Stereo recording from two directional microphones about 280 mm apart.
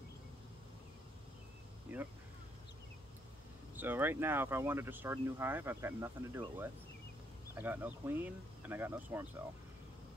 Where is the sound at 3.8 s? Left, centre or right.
Centre.